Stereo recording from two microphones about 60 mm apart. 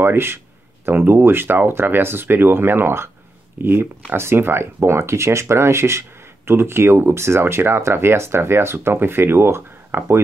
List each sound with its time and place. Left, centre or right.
0.0 s speech: right